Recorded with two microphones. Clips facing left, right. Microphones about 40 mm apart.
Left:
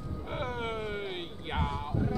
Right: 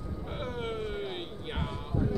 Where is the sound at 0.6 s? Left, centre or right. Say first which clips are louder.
Even; centre.